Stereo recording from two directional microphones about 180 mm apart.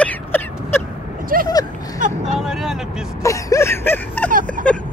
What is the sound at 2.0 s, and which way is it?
Vehicle, 45° right (ahead or behind).